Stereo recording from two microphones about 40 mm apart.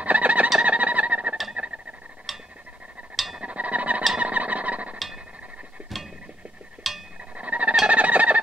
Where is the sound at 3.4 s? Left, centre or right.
Right.